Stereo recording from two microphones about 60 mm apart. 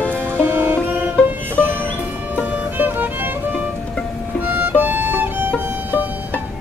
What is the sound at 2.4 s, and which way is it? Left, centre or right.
Music, right.